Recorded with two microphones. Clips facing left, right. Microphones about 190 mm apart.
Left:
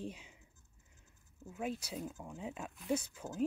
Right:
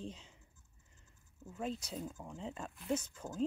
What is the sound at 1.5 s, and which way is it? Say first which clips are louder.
Speech: left 1 dB; 10° left (ahead or behind).